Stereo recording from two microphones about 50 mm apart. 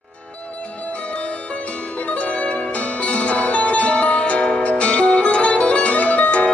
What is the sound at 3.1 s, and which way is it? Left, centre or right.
Music, left.